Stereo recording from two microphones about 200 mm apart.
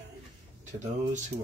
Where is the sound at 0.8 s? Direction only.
35° right (ahead or behind).